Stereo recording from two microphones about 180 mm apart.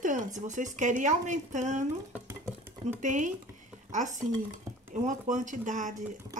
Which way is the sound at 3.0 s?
45° right (ahead or behind).